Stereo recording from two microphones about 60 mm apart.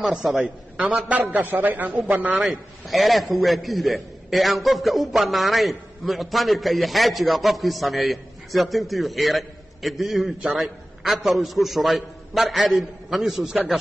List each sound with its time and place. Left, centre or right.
0.1 s a man's voice: centre
1.0 s a man's voice: right
2.9 s a man's voice: centre